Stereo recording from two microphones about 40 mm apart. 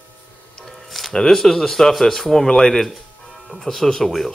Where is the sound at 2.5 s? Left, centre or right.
Centre.